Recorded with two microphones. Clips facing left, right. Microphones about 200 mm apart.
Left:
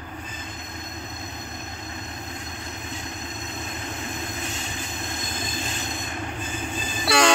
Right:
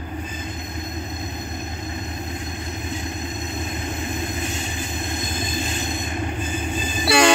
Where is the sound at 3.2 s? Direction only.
10° right (ahead or behind).